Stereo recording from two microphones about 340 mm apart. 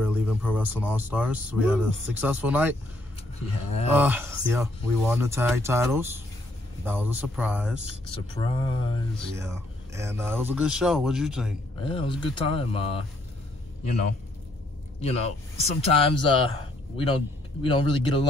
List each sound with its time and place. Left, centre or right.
0.0 s speech: centre
3.9 s speech: centre
8.4 s speech: centre
9.4 s speech: centre
11.8 s speech: centre
15.0 s speech: centre